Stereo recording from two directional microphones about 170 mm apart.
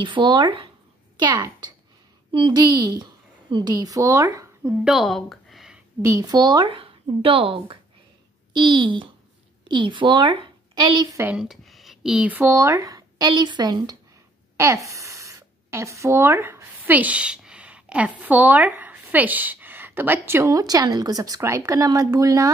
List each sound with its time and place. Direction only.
0.0 s a woman's voice: 25° right (ahead or behind)
4.8 s speech: centre (ahead or behind)
6.0 s a woman's voice: 20° right (ahead or behind)
11.2 s speech: 5° right (ahead or behind); by 22.5 s 20° right (ahead or behind)